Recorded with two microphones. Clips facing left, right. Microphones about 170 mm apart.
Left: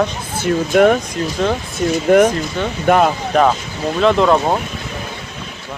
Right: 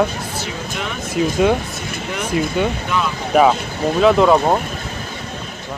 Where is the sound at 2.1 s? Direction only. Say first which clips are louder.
Left 6 dB; 55° left (ahead or behind).